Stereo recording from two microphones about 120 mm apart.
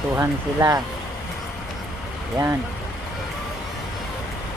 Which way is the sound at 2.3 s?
25° right (ahead or behind).